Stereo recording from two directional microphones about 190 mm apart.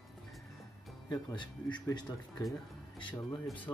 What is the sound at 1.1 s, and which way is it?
Speech, 25° left (ahead or behind).